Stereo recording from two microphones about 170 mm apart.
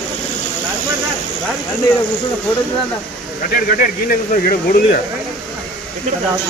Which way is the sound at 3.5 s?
55° left (ahead or behind).